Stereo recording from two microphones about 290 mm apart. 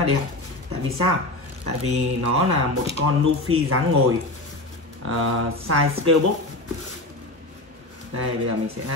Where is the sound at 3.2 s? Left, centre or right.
Right.